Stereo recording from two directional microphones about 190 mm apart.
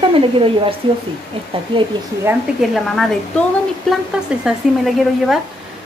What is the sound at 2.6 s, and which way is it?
Speech, centre (ahead or behind).